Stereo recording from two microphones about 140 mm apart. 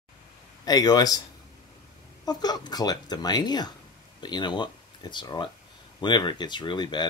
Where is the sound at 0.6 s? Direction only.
30° left (ahead or behind).